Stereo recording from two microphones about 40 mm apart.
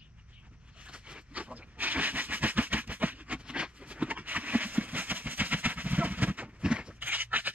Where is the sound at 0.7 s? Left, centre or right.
Right.